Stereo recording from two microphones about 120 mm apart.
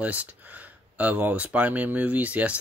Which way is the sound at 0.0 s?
10° right (ahead or behind).